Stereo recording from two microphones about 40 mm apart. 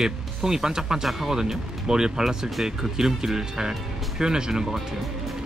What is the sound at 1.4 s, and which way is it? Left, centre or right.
Speech, centre.